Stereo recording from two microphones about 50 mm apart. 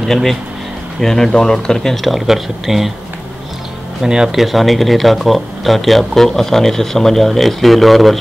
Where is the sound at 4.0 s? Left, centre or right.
Centre.